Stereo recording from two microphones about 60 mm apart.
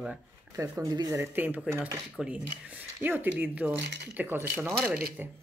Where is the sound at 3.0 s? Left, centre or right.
Right.